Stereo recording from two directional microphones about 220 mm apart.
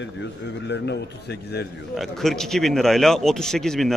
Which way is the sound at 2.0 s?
Centre (ahead or behind).